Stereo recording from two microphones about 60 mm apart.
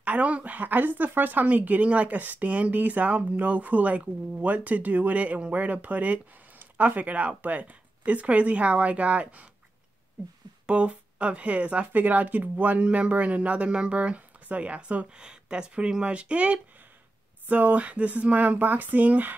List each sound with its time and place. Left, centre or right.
0.0 s speech: right
10.7 s speech: centre